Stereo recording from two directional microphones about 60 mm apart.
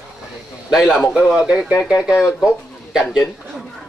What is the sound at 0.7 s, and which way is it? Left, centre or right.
Speech, centre.